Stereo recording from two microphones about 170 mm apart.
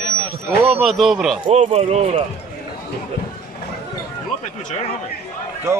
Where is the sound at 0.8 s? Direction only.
Centre (ahead or behind).